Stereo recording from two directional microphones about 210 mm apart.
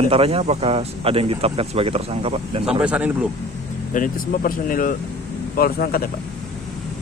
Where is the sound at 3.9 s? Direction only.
40° left (ahead or behind).